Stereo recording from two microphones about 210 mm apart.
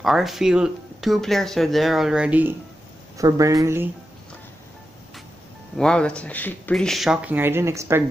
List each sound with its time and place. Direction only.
0.0 s speech: centre (ahead or behind)
5.8 s speech: 5° left (ahead or behind); by 8.0 s 15° right (ahead or behind)